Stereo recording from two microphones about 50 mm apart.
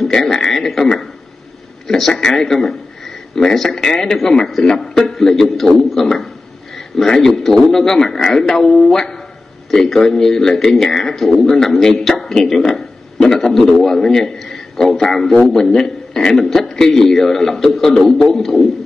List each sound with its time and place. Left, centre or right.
0.1 s frog: centre
1.9 s a man's voice: centre
16.4 s a man's voice: centre